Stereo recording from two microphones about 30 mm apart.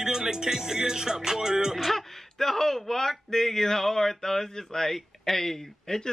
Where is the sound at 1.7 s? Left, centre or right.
Centre.